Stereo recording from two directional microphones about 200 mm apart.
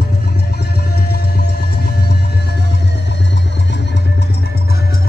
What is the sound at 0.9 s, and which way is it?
Music, 50° left (ahead or behind).